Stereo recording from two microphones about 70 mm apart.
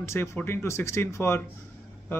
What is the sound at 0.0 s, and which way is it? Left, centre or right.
Speech, left.